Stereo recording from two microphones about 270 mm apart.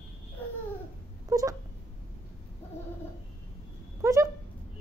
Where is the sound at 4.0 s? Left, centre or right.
Centre.